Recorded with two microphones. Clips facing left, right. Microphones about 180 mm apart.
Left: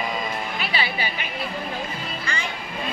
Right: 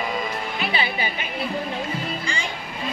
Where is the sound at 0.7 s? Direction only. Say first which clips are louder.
Right 1 dB; 20° right (ahead or behind).